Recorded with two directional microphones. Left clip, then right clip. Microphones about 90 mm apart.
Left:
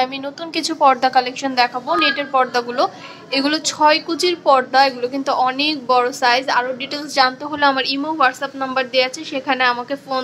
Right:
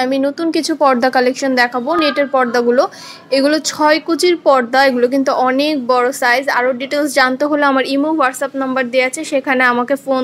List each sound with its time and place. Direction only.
0.0 s a woman's voice: 35° right (ahead or behind)
7.5 s a woman's voice: 25° right (ahead or behind)